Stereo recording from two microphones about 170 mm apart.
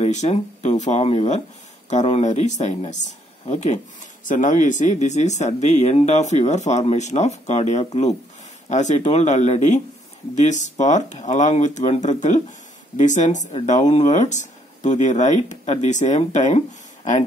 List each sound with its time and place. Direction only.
0.0 s speech: 40° left (ahead or behind)